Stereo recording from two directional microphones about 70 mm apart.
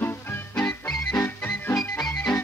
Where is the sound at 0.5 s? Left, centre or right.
Centre.